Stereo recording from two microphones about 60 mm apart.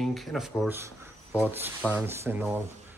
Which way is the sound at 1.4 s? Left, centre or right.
Right.